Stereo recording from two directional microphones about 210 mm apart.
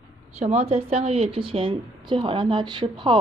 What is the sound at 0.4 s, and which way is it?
A woman's voice, 30° right (ahead or behind).